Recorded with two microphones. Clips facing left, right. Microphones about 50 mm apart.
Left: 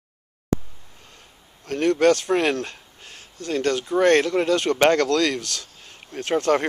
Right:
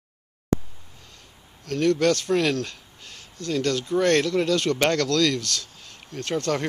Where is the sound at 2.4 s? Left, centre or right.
Left.